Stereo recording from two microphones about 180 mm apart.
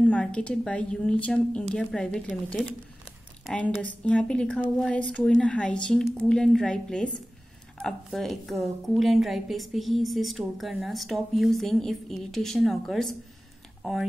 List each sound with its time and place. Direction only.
0.0 s a woman's voice: 5° left (ahead or behind)